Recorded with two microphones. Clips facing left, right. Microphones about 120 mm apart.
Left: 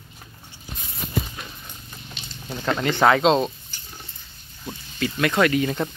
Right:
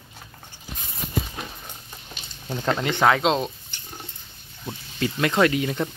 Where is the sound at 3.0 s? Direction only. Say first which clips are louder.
Left 2 dB; centre (ahead or behind).